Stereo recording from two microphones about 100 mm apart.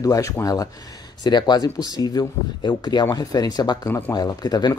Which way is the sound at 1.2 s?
45° left (ahead or behind).